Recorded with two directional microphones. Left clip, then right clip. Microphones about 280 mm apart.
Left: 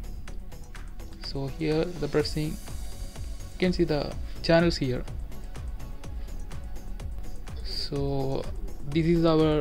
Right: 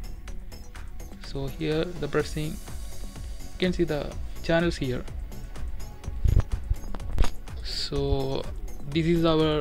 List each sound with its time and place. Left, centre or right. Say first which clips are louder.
1.2 s speech: left 1 dB; centre
7.6 s speech: right 2 dB; centre